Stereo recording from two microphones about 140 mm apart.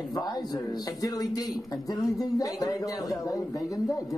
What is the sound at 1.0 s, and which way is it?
A man's voice, 25° left (ahead or behind).